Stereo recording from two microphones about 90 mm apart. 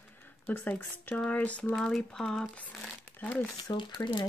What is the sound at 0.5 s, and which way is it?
Speech, 20° left (ahead or behind).